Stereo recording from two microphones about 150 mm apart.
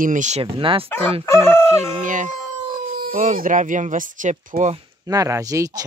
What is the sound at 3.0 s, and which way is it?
Speech, 65° right (ahead or behind).